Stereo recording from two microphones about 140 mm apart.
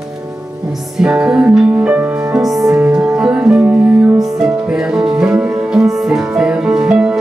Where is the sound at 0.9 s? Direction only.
5° right (ahead or behind).